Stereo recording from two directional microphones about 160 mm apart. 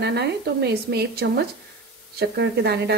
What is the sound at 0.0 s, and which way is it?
A woman's voice, 90° right.